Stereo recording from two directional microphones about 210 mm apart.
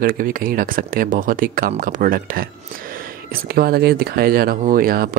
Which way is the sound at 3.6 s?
50° right (ahead or behind).